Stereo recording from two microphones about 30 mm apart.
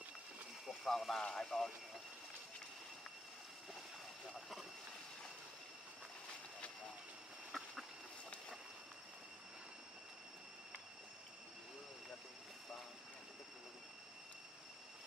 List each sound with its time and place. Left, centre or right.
0.7 s speech: centre
1.3 s speech: centre
7.5 s duck: centre